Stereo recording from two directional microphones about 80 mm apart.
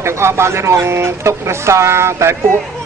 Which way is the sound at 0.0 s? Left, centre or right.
Right.